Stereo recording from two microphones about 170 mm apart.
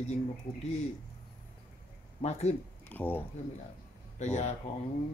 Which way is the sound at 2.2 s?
40° left (ahead or behind).